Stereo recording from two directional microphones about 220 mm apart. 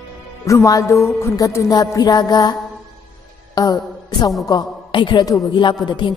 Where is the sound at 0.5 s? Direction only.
15° left (ahead or behind).